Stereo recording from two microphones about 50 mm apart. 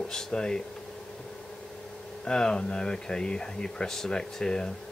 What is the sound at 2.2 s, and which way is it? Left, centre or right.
Speech, centre.